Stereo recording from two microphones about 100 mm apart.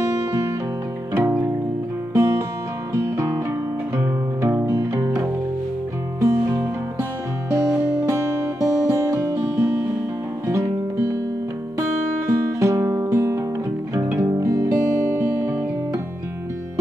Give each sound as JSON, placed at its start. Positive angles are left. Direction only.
{"t": 1.1, "sound": "music", "side_deg": -25}
{"t": 6.1, "sound": "music", "side_deg": -30}
{"t": 7.7, "sound": "music", "side_deg": -10}
{"t": 8.1, "sound": "music", "side_deg": -30}
{"t": 10.4, "sound": "guitar", "side_deg": -30}
{"t": 12.5, "sound": "music", "side_deg": -30}
{"t": 14.4, "sound": "music", "side_deg": -30}
{"t": 15.0, "sound": "music", "side_deg": -20}